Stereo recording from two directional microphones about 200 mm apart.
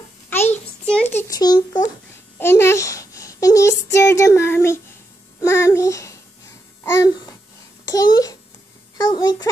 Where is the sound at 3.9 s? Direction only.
15° left (ahead or behind).